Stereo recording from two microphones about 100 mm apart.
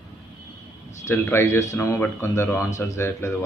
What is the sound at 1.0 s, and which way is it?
Speech, 25° left (ahead or behind).